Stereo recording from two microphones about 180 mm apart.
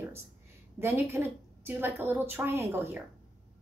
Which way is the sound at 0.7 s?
15° right (ahead or behind).